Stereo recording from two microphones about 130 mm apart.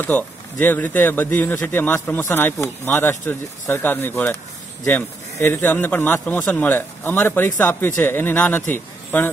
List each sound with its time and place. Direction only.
0.0 s speech: 15° left (ahead or behind)